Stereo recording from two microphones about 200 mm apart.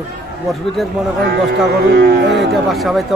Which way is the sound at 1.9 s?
60° right (ahead or behind).